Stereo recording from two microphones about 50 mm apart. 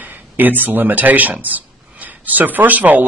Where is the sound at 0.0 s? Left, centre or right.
Right.